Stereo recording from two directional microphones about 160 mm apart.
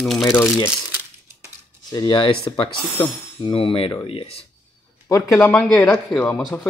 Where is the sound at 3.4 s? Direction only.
35° left (ahead or behind).